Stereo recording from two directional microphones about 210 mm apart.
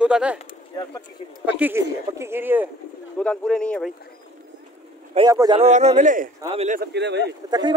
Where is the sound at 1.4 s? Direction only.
10° right (ahead or behind).